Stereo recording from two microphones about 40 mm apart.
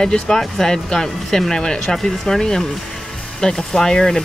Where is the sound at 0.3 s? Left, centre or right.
Centre.